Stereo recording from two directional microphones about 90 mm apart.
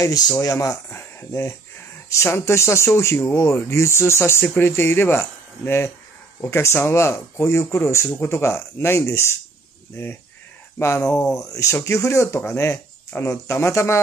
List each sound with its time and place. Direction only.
0.0 s speech: 40° left (ahead or behind)
0.8 s speech: 30° left (ahead or behind)
10.8 s speech: 30° left (ahead or behind)